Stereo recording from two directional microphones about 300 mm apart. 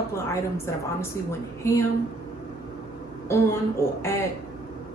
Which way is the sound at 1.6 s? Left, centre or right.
Centre.